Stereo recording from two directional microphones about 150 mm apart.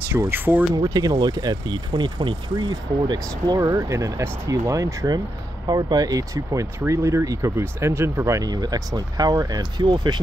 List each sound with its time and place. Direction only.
0.1 s speech: 15° right (ahead or behind)